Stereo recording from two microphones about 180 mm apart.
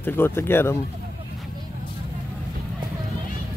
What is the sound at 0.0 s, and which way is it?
Speech, 10° left (ahead or behind).